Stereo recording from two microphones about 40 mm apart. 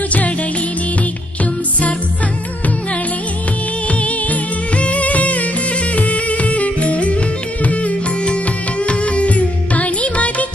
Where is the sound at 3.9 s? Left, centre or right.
Left.